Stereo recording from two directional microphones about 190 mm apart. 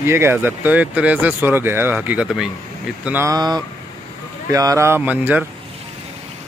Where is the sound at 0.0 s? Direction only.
15° right (ahead or behind).